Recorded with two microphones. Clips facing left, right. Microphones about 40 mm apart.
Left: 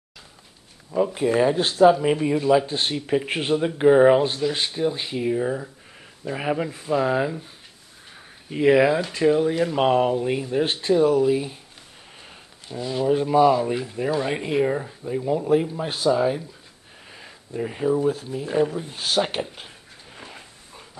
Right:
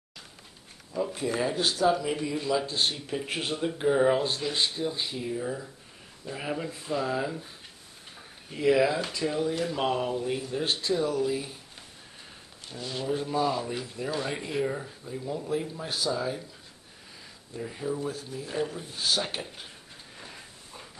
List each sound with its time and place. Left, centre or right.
0.9 s speech: left
2.3 s speech: left
8.5 s speech: left
12.7 s speech: centre
13.0 s speech: left
20.2 s a sound: left